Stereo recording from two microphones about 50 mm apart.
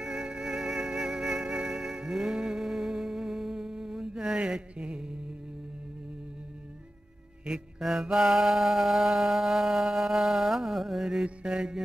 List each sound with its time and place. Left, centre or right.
0.0 s music: centre
4.4 s a sound: centre
7.8 s mantra: centre